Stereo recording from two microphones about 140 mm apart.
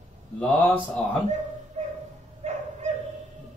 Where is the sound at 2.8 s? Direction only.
55° right (ahead or behind).